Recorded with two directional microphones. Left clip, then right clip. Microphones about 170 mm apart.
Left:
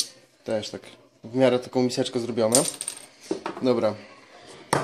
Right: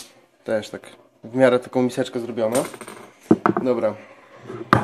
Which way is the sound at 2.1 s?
15° left (ahead or behind).